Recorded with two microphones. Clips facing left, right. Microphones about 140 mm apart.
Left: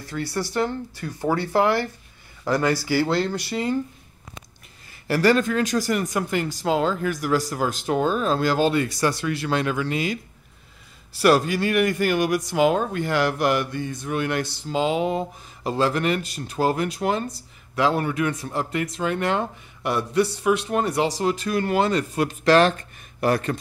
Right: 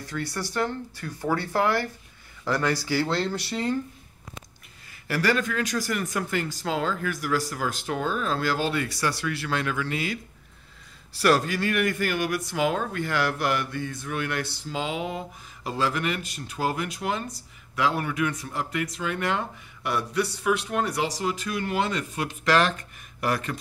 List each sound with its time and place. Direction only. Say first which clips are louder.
0.0 s speech: left 4 dB; 10° left (ahead or behind)
5.0 s speech: left 6 dB; 30° left (ahead or behind)
11.1 s speech: left 4 dB; 15° left (ahead or behind)